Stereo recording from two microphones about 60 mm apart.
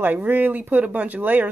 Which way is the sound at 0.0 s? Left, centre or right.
Right.